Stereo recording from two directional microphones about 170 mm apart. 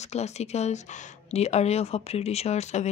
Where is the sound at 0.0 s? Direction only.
40° left (ahead or behind).